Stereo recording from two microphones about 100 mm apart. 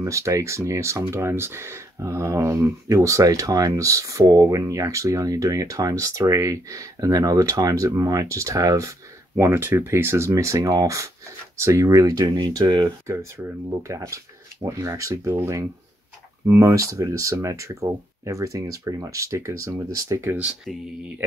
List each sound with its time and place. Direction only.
0.0 s speech: 30° right (ahead or behind)
9.4 s speech: 25° right (ahead or behind); by 12.9 s 45° right (ahead or behind)
13.0 s speech: 30° right (ahead or behind)
20.3 s speech: 10° right (ahead or behind)